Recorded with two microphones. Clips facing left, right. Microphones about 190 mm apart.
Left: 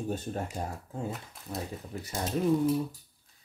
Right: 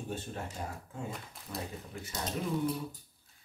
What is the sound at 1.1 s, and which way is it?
Speech, 5° left (ahead or behind).